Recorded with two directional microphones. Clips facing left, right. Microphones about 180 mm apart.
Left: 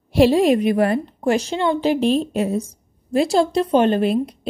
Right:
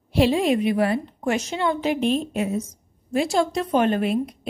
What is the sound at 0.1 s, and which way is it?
A woman's voice, 45° left (ahead or behind).